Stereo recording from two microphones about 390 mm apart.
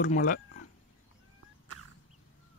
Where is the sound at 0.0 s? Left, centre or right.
Left.